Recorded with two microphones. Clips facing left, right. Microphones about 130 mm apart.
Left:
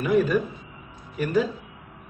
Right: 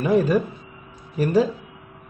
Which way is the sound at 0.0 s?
35° right (ahead or behind).